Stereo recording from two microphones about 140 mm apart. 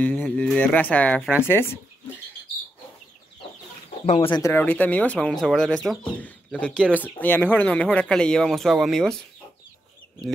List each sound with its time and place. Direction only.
0.0 s speech: 10° left (ahead or behind)
4.0 s speech: 50° left (ahead or behind)
4.3 s speech: 20° left (ahead or behind); by 9.2 s centre (ahead or behind)